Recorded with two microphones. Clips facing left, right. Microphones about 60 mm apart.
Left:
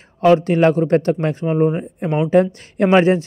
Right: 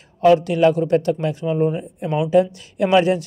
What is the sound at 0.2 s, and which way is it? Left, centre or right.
Speech, left.